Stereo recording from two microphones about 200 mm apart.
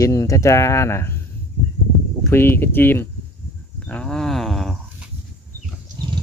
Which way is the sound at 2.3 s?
10° left (ahead or behind).